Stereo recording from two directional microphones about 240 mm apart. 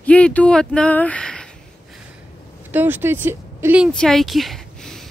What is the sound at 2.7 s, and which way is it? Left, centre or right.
Speech, centre.